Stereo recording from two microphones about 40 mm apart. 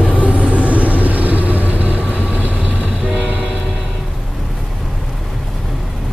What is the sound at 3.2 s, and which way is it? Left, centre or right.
Train, right.